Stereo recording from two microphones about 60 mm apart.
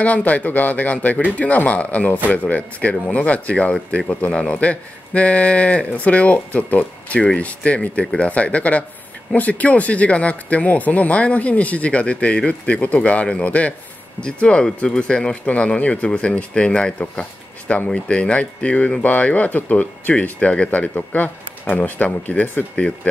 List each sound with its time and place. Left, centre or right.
0.0 s speech: left